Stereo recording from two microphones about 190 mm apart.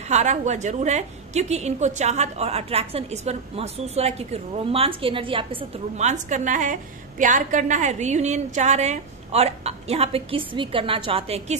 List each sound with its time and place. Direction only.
0.1 s a woman's voice: 40° right (ahead or behind)